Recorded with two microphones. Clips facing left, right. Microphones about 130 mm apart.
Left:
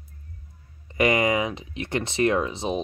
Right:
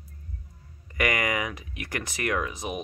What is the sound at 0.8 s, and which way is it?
Speech, 25° left (ahead or behind).